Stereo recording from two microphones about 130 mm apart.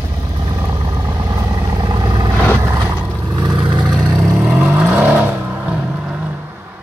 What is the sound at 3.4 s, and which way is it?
Vehicle, 35° right (ahead or behind).